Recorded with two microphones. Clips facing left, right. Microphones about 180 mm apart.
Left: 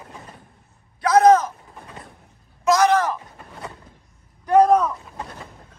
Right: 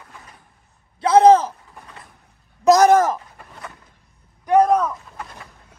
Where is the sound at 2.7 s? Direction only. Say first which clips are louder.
Right 4 dB; 45° right (ahead or behind).